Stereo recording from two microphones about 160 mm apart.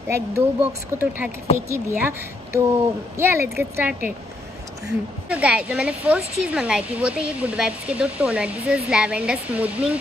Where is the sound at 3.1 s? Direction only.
15° right (ahead or behind).